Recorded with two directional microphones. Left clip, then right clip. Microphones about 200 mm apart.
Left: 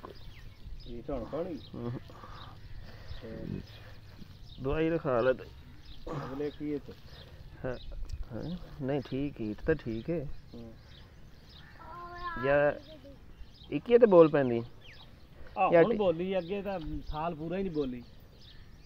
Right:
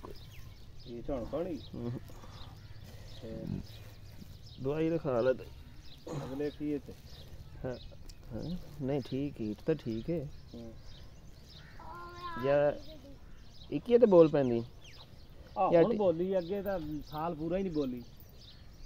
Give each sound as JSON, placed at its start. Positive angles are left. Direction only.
{"t": 1.0, "sound": "speech", "side_deg": 5}
{"t": 1.8, "sound": "crow", "side_deg": 0}
{"t": 4.6, "sound": "speech", "side_deg": 5}
{"t": 12.2, "sound": "cat", "side_deg": -40}
{"t": 12.4, "sound": "speech", "side_deg": 5}
{"t": 15.7, "sound": "speech", "side_deg": 5}
{"t": 16.0, "sound": "speech", "side_deg": 20}